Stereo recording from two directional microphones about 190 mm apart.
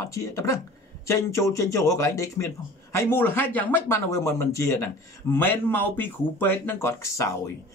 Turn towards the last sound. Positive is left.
turn(degrees=15)  # may be behind; listen again after turning